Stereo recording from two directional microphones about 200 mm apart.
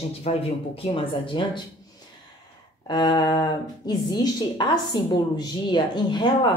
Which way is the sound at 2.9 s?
20° left (ahead or behind).